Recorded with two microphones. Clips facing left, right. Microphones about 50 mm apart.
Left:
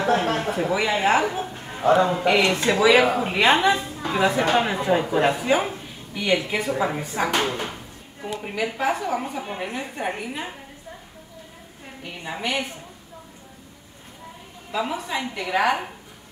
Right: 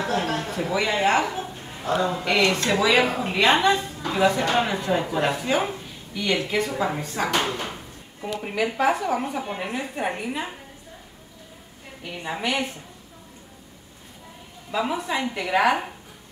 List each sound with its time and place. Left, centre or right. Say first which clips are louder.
0.0 s speech: left 4 dB; left; by 1.3 s centre
1.3 s bow-wow: left 2 dB; left
2.1 s a woman's voice: left 2 dB; centre
12.0 s a woman's voice: right 1 dB; centre
14.7 s a woman's voice: right 1 dB; centre